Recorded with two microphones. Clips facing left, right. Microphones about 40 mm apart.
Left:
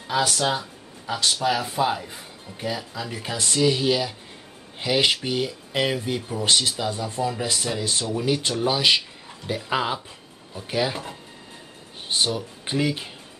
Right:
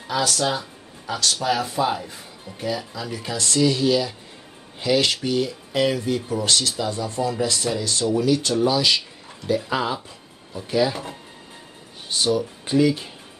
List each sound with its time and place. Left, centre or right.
0.1 s speech: centre
0.6 s music: centre
1.3 s speech: centre
3.1 s speech: left
10.0 s a sound: left
12.1 s speech: left